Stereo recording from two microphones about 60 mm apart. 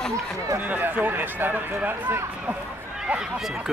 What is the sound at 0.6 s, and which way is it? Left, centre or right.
A man's voice, right.